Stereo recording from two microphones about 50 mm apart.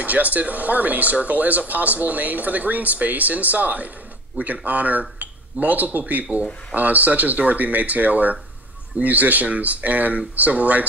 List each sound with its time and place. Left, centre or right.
0.0 s speech: right